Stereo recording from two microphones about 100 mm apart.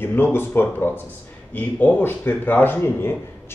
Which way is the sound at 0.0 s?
20° left (ahead or behind).